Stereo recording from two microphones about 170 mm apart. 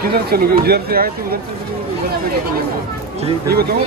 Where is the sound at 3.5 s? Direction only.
65° right (ahead or behind).